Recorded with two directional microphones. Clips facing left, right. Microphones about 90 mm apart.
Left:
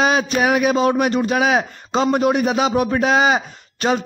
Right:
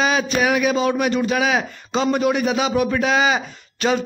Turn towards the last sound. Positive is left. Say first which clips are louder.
# left 1 dB
turn(degrees=35)  # may be behind; listen again after turning